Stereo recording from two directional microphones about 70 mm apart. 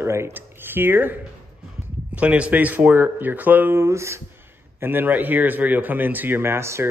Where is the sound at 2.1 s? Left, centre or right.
Centre.